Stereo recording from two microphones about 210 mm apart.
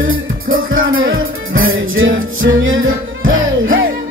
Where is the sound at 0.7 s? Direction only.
70° right (ahead or behind).